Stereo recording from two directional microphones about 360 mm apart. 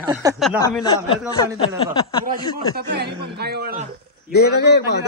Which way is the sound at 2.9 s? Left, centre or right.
Right.